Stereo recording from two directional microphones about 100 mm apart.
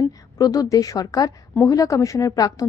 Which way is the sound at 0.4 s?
35° left (ahead or behind).